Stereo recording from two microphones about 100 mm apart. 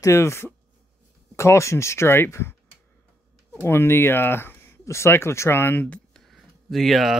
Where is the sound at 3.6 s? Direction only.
25° left (ahead or behind); by 7.2 s centre (ahead or behind).